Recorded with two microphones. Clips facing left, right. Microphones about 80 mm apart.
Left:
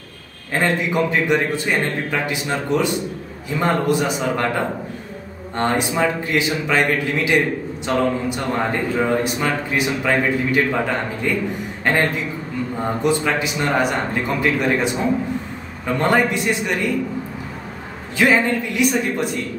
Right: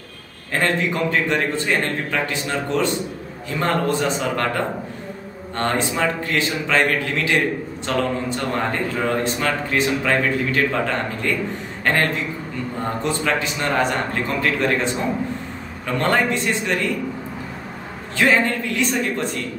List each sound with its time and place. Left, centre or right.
0.5 s a man's voice: centre
16.0 s a man's voice: centre
18.1 s a man's voice: centre